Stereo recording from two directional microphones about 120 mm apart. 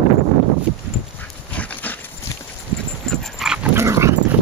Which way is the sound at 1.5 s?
15° left (ahead or behind).